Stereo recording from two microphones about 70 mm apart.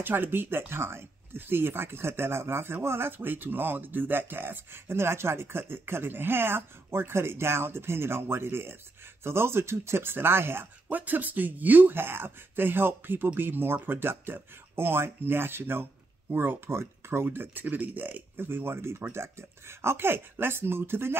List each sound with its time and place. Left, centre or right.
0.0 s speech: right